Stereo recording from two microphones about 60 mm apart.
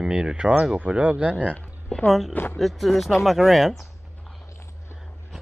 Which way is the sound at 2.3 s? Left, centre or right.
Left.